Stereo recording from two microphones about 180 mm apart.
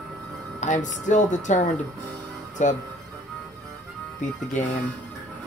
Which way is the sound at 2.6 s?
45° left (ahead or behind).